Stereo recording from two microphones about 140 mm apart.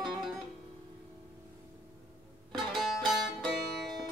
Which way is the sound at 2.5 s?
Centre (ahead or behind).